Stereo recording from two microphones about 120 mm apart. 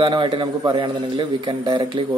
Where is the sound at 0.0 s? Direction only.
40° right (ahead or behind).